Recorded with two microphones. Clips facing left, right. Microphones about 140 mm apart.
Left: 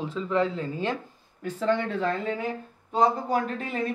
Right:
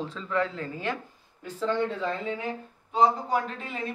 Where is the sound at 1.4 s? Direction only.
65° left (ahead or behind).